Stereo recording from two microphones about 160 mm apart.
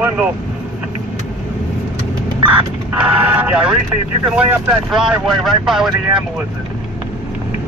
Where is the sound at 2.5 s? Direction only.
10° right (ahead or behind).